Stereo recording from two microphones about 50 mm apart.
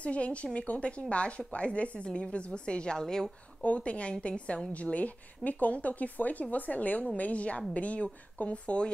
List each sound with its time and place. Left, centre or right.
0.0 s a woman's voice: left
3.6 s a woman's voice: left